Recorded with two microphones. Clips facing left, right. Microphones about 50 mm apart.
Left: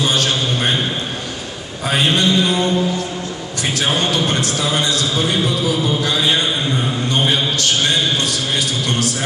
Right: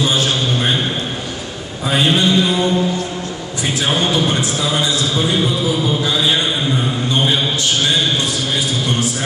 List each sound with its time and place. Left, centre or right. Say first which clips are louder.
0.3 s a sound: right 1 dB; centre
1.9 s a man's voice: right 1 dB; centre
4.4 s a man's voice: right 1 dB; centre
5.0 s a man's voice: right 1 dB; centre